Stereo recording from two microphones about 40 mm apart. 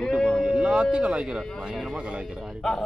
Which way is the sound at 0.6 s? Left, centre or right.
Right.